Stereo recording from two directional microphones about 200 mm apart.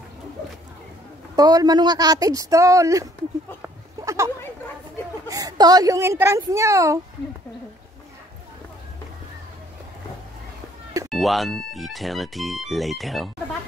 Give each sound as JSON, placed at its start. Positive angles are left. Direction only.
{"t": 1.3, "sound": "a woman's voice", "side_deg": -20}
{"t": 3.6, "sound": "goat", "side_deg": -15}
{"t": 5.3, "sound": "a woman's voice", "side_deg": -20}
{"t": 11.1, "sound": "speech", "side_deg": 0}